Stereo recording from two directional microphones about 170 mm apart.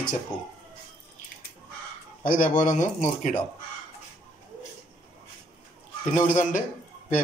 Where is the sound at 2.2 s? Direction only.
55° left (ahead or behind).